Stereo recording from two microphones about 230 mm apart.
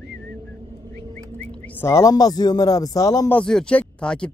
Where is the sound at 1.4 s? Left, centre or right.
Centre.